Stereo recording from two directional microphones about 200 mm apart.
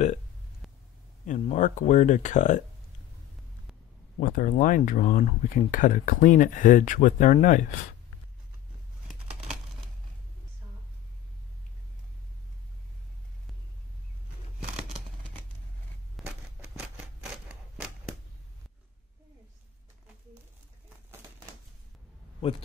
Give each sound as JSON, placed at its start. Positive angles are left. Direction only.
{"t": 1.2, "sound": "speech", "side_deg": 40}
{"t": 4.2, "sound": "speech", "side_deg": 40}
{"t": 16.2, "sound": "scissors", "side_deg": -5}